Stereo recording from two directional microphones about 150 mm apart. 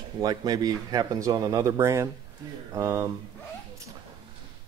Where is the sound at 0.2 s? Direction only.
25° right (ahead or behind).